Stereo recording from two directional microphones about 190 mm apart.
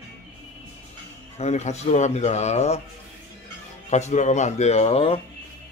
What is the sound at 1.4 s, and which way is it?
Speech, 35° left (ahead or behind).